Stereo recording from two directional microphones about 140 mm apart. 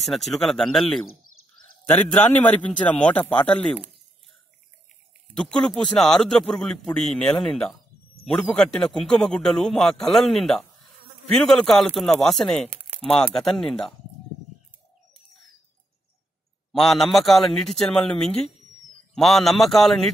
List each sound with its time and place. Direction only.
0.0 s a man's voice: centre (ahead or behind)
1.3 s frog: 90° left
1.9 s a man's voice: 10° left (ahead or behind)
5.4 s a man's voice: 5° left (ahead or behind)
12.6 s a sound: 10° right (ahead or behind)
13.2 s a man's voice: centre (ahead or behind)
16.7 s a man's voice: centre (ahead or behind)